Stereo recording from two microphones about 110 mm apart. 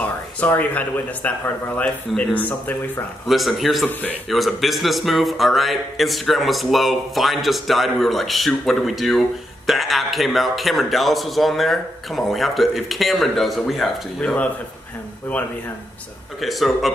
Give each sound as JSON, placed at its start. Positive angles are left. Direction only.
{"t": 0.0, "sound": "speech", "side_deg": 15}
{"t": 2.3, "sound": "speech", "side_deg": 15}
{"t": 3.3, "sound": "speech", "side_deg": 0}
{"t": 16.3, "sound": "speech", "side_deg": 0}